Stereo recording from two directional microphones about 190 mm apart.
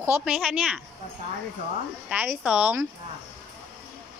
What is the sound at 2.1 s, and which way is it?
Speech, 5° right (ahead or behind).